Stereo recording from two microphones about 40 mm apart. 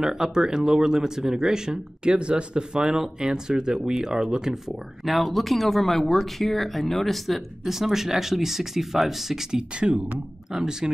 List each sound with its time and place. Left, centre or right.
0.0 s speech: centre
2.0 s speech: right
5.0 s speech: centre
9.6 s speech: right
10.5 s speech: centre